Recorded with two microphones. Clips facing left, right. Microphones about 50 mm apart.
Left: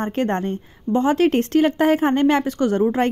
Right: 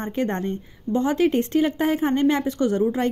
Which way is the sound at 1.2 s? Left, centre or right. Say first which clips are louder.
Left 3 dB; left.